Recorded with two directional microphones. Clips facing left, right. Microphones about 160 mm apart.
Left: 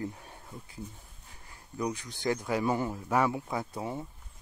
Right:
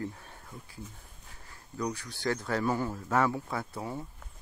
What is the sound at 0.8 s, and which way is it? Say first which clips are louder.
Speech: left 3 dB; 90° right.